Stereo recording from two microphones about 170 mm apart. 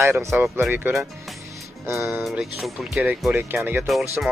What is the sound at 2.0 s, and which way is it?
Speech, centre (ahead or behind).